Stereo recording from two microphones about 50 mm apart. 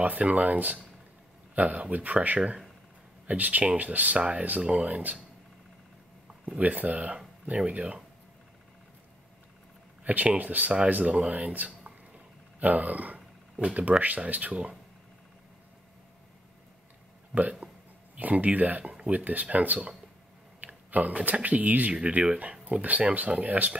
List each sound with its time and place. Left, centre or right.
0.0 s speech: right
6.6 s speech: right
10.0 s speech: right
17.3 s speech: right